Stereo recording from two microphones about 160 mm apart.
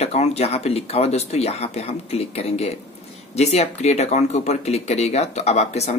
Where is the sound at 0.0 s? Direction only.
40° left (ahead or behind).